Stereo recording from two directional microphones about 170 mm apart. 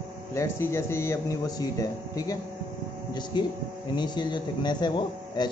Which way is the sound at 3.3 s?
25° left (ahead or behind).